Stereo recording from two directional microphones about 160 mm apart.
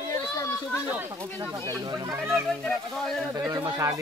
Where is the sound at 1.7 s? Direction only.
20° right (ahead or behind).